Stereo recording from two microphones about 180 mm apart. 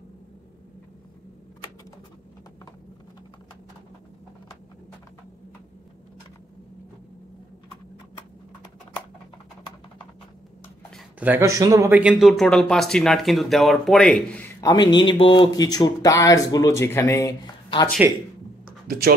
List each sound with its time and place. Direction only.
11.1 s speech: 10° right (ahead or behind); by 17.8 s 20° left (ahead or behind)
18.9 s speech: 55° right (ahead or behind)